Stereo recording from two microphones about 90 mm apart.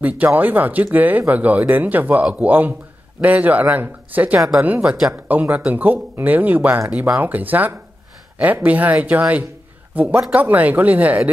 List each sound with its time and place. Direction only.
0.0 s speech: 20° right (ahead or behind)
4.6 s speech: 30° right (ahead or behind)
5.1 s speech: 20° right (ahead or behind)